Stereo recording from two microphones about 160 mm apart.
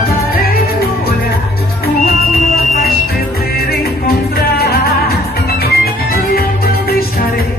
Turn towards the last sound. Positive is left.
turn(degrees=70)  # may be behind; listen again after turning